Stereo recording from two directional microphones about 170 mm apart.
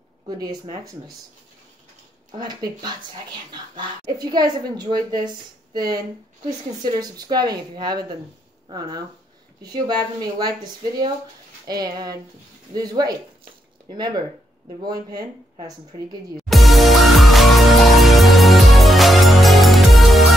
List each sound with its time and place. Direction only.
0.4 s a woman's voice: 20° right (ahead or behind)
2.3 s a woman's voice: 25° right (ahead or behind)
16.3 s music: centre (ahead or behind)